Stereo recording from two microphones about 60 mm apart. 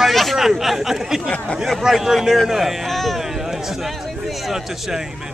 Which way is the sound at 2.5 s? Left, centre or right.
Centre.